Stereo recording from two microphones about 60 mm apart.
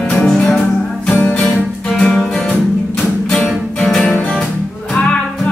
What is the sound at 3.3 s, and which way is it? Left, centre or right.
Music, centre.